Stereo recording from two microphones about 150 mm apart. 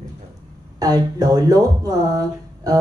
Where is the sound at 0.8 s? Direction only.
25° right (ahead or behind).